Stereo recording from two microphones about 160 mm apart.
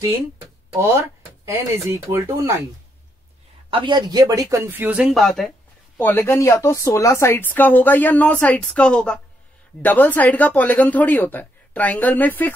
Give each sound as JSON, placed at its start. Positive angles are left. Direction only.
{"t": 0.7, "sound": "speech", "side_deg": -15}
{"t": 3.7, "sound": "speech", "side_deg": -30}
{"t": 5.9, "sound": "speech", "side_deg": 15}